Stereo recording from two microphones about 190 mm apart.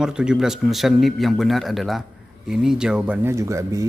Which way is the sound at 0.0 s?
5° right (ahead or behind).